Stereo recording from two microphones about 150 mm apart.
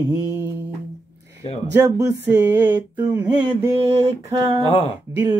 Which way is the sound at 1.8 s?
20° right (ahead or behind).